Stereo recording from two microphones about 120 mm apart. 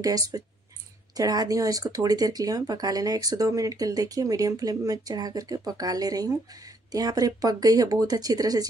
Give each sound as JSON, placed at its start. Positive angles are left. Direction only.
{"t": 0.0, "sound": "speech", "side_deg": -30}